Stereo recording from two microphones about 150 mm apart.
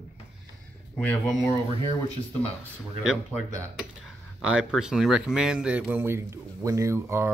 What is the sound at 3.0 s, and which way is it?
Speech, 5° right (ahead or behind).